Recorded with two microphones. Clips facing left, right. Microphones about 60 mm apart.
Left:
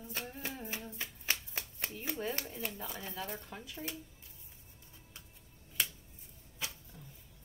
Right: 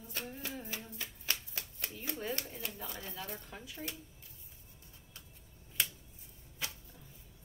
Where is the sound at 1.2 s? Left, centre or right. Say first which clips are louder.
Left 2 dB; left.